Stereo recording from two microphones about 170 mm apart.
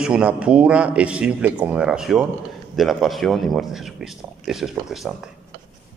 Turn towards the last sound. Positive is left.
turn(degrees=0)  # may be behind; listen again after turning